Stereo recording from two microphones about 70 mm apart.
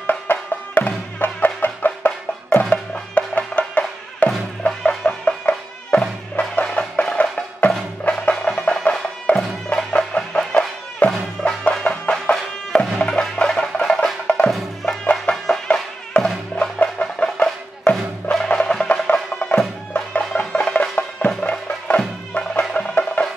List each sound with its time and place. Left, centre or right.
0.0 s music: left
14.5 s music: centre
15.3 s music: centre